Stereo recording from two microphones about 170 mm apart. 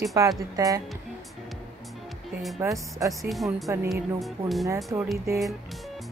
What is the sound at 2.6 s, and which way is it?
Speech, 20° right (ahead or behind).